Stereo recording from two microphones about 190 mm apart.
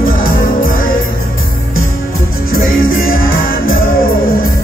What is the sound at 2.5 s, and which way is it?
Music, 50° left (ahead or behind).